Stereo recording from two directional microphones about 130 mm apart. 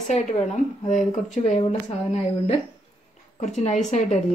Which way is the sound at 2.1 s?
55° left (ahead or behind).